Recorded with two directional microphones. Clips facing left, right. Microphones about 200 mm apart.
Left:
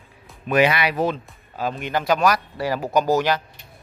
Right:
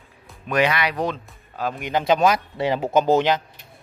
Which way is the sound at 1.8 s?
20° right (ahead or behind).